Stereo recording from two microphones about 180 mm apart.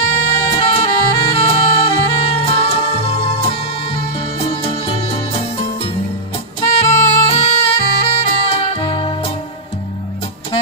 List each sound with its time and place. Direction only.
0.1 s music: 30° left (ahead or behind)